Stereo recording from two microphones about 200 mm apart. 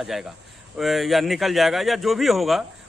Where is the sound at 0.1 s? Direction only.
Centre (ahead or behind).